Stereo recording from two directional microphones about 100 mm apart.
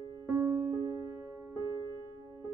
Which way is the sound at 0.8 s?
40° right (ahead or behind).